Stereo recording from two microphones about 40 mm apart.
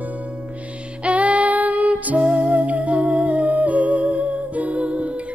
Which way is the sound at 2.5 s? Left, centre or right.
Right.